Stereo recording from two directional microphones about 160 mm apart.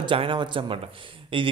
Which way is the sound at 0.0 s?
30° right (ahead or behind).